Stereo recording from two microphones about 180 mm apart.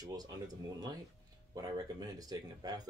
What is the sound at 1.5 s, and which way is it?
Speech, 20° right (ahead or behind).